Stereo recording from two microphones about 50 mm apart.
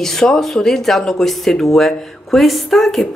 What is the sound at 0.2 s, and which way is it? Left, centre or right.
Speech, centre.